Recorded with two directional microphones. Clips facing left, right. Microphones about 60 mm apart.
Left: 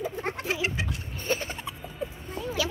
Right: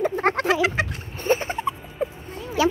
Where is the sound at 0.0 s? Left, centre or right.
Right.